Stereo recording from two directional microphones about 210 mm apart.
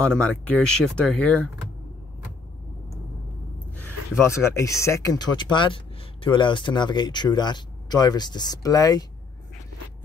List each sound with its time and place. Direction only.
0.0 s speech: 5° left (ahead or behind)
4.2 s speech: 15° left (ahead or behind)